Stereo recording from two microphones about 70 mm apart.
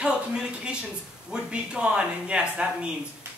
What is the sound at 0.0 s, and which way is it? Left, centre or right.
Speech, centre.